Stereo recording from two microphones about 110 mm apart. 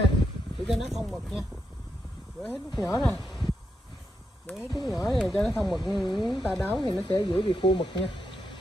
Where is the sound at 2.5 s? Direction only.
Centre (ahead or behind).